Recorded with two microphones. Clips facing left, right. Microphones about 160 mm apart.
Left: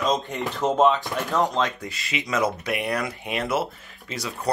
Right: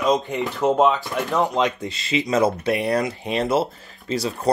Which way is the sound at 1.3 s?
15° right (ahead or behind).